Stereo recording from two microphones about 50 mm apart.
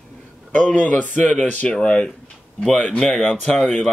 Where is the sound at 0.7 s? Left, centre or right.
Left.